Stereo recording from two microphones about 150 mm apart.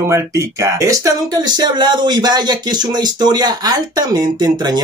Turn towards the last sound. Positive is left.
turn(degrees=-25)  # may be behind; listen again after turning